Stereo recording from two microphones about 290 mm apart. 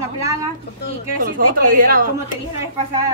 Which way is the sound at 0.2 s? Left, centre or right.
Centre.